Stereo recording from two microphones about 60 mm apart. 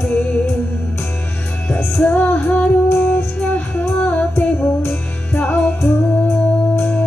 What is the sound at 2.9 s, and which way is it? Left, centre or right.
Music, left.